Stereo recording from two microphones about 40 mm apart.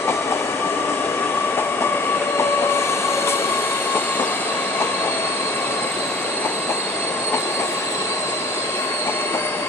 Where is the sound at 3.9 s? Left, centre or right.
Left.